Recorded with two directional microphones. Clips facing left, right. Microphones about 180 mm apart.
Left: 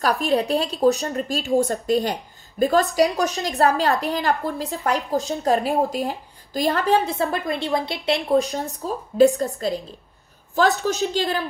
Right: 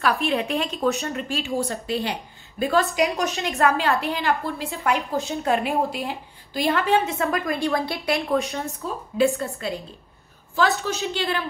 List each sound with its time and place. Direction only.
0.0 s a woman's voice: 40° left (ahead or behind); by 8.2 s 25° left (ahead or behind)
8.3 s a woman's voice: 35° left (ahead or behind)
10.8 s a woman's voice: 40° left (ahead or behind)